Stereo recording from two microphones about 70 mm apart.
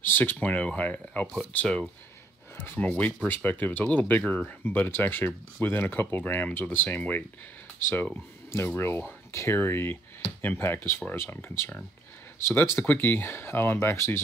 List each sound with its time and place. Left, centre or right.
0.0 s speech: left
2.5 s speech: left
2.8 s speech: left
4.5 s speech: left
8.6 s speech: left